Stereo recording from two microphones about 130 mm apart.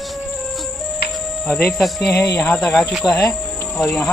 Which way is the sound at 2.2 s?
20° left (ahead or behind).